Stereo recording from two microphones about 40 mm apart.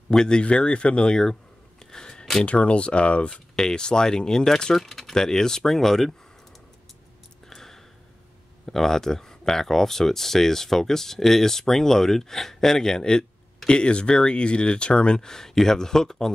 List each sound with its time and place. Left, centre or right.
0.1 s speech: centre
1.9 s a sound: centre
2.4 s speech: left
3.5 s speech: centre
4.7 s speech: centre
7.4 s a sound: centre
8.6 s speech: centre; by 15.1 s left
15.1 s speech: centre